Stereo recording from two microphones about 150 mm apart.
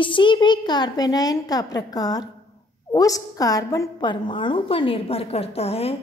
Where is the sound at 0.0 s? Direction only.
35° left (ahead or behind).